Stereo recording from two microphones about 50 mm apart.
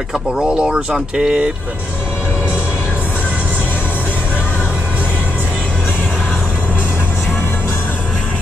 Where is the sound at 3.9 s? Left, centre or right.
Left.